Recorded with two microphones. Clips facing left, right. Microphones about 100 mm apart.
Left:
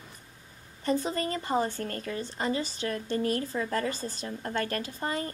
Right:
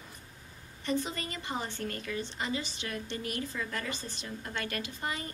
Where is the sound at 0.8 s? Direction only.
40° left (ahead or behind).